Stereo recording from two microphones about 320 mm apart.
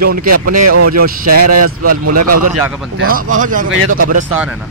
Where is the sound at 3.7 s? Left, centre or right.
Right.